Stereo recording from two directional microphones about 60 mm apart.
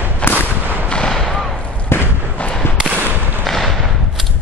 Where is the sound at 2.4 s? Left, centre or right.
Centre.